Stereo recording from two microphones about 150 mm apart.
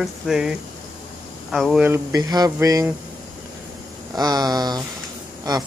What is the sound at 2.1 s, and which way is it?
Speech, 25° right (ahead or behind).